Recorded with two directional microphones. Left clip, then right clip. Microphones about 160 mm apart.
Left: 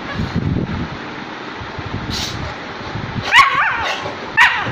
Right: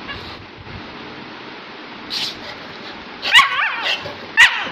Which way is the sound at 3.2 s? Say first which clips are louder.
Left 2 dB; 10° right (ahead or behind).